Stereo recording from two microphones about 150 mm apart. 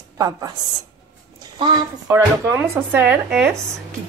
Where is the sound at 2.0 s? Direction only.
15° right (ahead or behind).